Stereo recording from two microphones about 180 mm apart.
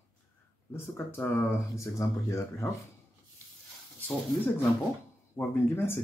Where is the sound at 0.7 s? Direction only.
15° left (ahead or behind).